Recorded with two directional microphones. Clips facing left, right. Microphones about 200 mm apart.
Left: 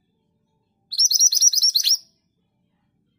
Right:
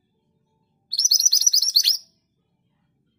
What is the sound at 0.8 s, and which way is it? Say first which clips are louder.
Chirp: even; 15° right (ahead or behind).